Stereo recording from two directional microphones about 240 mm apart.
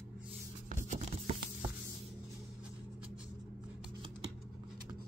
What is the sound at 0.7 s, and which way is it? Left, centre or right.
Music, right.